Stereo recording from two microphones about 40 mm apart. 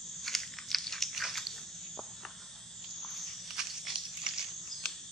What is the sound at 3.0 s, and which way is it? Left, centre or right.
Walk, centre.